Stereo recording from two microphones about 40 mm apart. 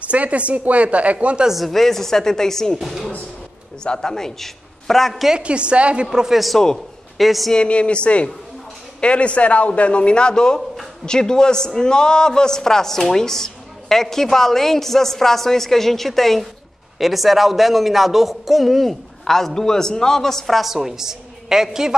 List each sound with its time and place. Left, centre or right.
0.0 s speech: right
1.7 s a woman's voice: centre
2.8 s speech: centre
3.8 s a woman's voice: centre
5.4 s a woman's voice: right
6.1 s a man's voice: centre
7.2 s speech: centre
7.5 s a man's voice: left; by 13.0 s centre
13.1 s a sound: centre
14.0 s a woman's voice: centre
20.7 s a woman's voice: centre